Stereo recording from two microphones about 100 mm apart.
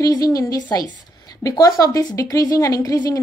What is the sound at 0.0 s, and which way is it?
A woman's voice, 40° left (ahead or behind).